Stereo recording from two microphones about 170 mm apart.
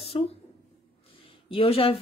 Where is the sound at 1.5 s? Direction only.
30° left (ahead or behind).